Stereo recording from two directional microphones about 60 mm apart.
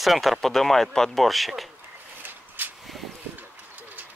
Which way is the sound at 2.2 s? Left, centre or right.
Right.